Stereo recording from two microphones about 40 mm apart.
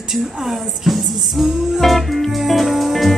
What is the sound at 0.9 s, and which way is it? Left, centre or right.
Music, centre.